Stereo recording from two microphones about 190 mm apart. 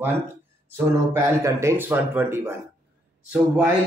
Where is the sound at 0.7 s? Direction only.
15° right (ahead or behind).